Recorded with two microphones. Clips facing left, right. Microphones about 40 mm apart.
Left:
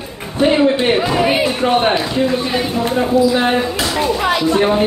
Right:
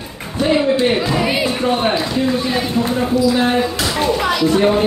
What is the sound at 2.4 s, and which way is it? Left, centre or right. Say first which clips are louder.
Speech: left 1 dB; centre.